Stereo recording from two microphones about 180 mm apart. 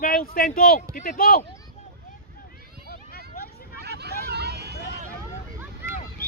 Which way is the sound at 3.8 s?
65° right (ahead or behind).